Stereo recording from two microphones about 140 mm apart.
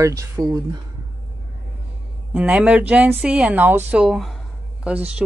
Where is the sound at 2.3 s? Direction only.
10° right (ahead or behind).